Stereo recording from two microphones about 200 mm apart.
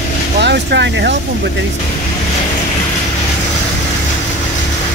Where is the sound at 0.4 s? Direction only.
60° right (ahead or behind).